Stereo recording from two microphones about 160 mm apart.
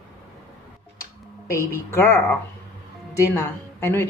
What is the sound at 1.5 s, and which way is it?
A woman's voice, 15° left (ahead or behind).